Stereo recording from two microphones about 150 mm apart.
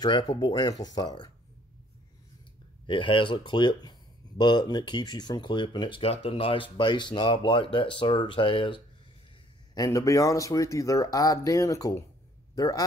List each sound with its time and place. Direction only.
0.0 s speech: 30° left (ahead or behind)
2.9 s speech: 35° left (ahead or behind)
9.8 s a man's voice: 20° left (ahead or behind)